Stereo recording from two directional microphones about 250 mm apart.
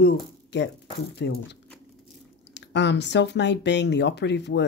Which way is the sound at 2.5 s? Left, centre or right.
Left.